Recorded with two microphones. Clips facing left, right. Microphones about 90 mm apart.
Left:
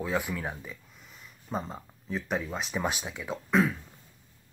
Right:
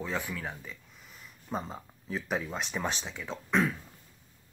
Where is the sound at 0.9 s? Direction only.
Centre (ahead or behind).